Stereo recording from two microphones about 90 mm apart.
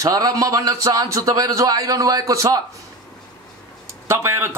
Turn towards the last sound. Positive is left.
turn(degrees=-30)  # may be behind; listen again after turning